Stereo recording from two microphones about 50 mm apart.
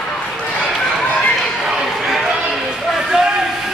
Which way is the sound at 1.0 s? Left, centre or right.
Left.